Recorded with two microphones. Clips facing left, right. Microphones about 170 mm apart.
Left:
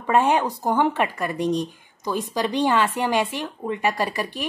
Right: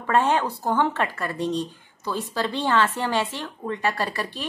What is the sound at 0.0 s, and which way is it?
Speech, 15° left (ahead or behind).